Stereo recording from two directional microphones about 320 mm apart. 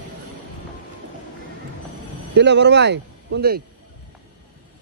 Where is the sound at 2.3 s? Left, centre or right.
Right.